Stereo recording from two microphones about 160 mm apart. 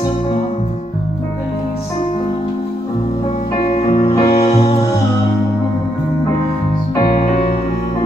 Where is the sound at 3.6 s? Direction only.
40° left (ahead or behind).